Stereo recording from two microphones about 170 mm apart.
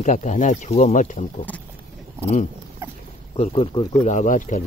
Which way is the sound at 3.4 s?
30° left (ahead or behind).